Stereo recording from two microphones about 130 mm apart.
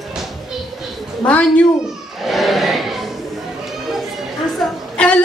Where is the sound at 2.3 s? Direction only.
Centre (ahead or behind).